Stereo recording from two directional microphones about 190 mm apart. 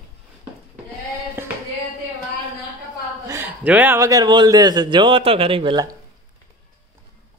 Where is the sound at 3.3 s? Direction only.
10° right (ahead or behind).